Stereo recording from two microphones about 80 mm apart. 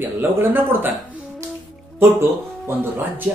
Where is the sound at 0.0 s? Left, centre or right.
Right.